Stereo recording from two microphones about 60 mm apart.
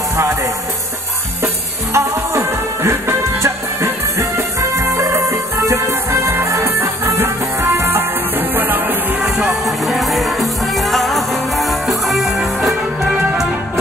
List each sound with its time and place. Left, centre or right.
0.1 s music: right
2.0 s music: right
9.8 s music: centre